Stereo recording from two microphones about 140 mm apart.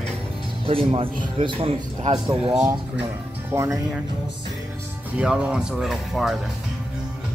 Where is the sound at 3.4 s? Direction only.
20° right (ahead or behind).